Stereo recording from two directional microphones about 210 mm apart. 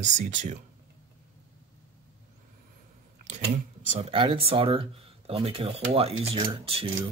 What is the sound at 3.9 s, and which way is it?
Speech, 25° right (ahead or behind).